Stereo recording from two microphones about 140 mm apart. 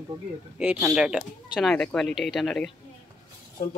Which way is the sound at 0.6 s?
5° right (ahead or behind).